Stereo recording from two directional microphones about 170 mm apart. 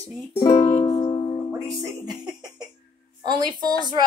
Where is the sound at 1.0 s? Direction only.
25° left (ahead or behind).